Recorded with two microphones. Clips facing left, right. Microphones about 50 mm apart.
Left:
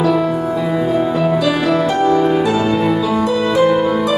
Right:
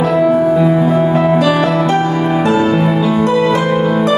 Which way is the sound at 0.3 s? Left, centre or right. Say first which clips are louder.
Right 7 dB; right.